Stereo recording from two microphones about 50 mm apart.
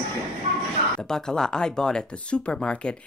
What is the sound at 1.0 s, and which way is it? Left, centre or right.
Speech, centre.